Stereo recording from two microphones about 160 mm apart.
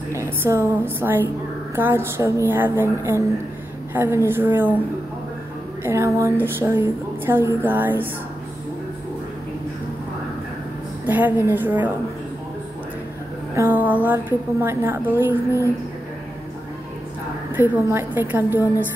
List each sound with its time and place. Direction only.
0.1 s a woman's voice: 20° right (ahead or behind)
5.9 s a woman's voice: 20° right (ahead or behind)
11.1 s a woman's voice: 10° right (ahead or behind)
13.6 s a woman's voice: 10° right (ahead or behind)
17.6 s a woman's voice: 15° right (ahead or behind)